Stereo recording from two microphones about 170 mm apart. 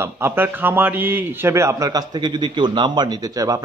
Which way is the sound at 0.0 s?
15° right (ahead or behind).